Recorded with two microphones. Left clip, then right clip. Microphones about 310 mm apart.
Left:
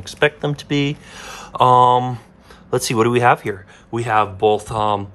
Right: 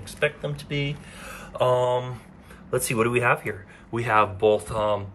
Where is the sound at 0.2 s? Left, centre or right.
Centre.